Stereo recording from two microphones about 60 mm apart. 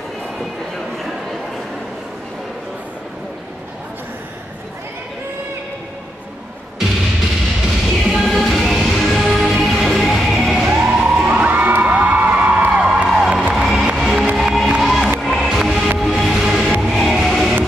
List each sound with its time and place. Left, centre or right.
7.6 s music: centre
10.7 s music: centre
11.2 s music: right
13.1 s music: centre